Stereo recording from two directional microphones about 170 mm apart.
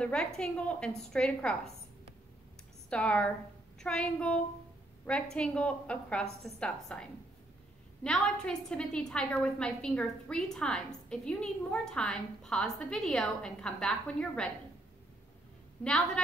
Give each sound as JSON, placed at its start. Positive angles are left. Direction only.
{"t": 0.0, "sound": "a woman's voice", "side_deg": 5}
{"t": 2.9, "sound": "a woman's voice", "side_deg": 5}